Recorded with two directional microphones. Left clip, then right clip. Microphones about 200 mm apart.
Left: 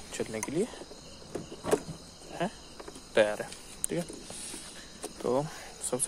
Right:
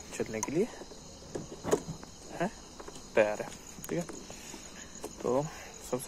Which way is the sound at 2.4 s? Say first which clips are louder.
Left 1 dB; 20° left (ahead or behind).